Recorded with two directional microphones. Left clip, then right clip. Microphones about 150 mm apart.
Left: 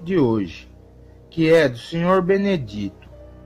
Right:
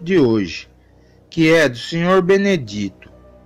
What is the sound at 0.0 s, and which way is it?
Speech, 10° right (ahead or behind).